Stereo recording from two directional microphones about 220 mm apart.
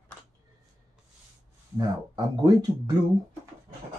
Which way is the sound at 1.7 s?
20° right (ahead or behind).